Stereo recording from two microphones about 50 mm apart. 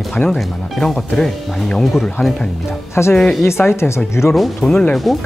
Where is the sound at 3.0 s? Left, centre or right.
Left.